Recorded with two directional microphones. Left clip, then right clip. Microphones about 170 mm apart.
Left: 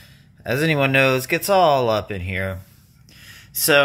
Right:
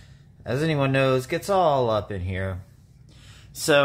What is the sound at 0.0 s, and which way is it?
Speech, 15° left (ahead or behind).